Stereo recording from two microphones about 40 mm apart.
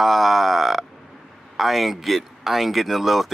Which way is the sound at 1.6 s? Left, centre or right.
Centre.